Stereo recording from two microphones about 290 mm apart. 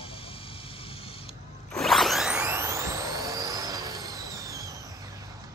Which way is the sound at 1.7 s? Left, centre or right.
Centre.